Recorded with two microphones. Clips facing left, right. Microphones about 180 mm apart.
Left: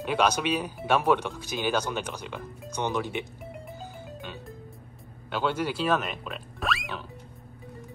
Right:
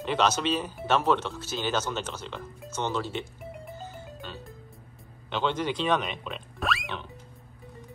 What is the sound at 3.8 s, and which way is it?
Music, 15° left (ahead or behind).